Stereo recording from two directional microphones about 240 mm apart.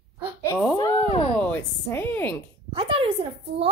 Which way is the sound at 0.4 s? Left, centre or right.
Centre.